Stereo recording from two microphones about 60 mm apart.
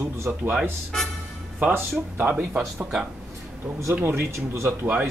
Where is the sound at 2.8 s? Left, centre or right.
Centre.